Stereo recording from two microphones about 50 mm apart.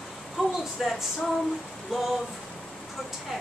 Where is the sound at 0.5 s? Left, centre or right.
Centre.